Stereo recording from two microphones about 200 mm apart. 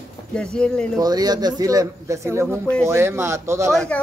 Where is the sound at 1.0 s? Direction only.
20° right (ahead or behind).